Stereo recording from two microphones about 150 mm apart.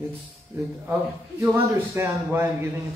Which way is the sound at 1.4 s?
15° right (ahead or behind).